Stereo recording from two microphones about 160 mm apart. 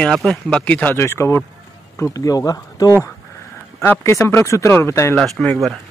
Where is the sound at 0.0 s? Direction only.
5° left (ahead or behind).